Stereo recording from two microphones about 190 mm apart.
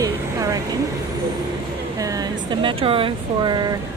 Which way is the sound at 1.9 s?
20° right (ahead or behind).